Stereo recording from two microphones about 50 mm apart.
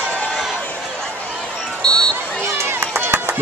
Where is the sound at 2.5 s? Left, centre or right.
Right.